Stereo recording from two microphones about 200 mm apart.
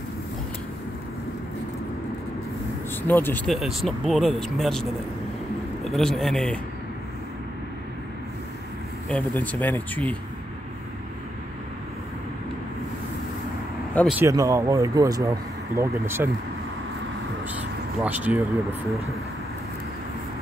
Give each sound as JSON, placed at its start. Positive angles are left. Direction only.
{"t": 3.0, "sound": "speech", "side_deg": 10}
{"t": 5.9, "sound": "speech", "side_deg": 0}
{"t": 9.1, "sound": "speech", "side_deg": 5}
{"t": 14.1, "sound": "speech", "side_deg": -15}
{"t": 18.0, "sound": "speech", "side_deg": -10}